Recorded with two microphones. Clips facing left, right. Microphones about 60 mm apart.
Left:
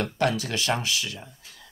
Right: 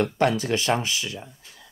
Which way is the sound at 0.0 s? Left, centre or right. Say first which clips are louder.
Right 3 dB; right.